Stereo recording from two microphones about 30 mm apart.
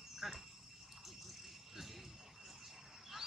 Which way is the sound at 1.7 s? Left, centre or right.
Centre.